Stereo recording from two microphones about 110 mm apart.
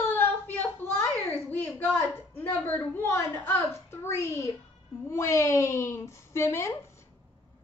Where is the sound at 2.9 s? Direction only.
20° left (ahead or behind).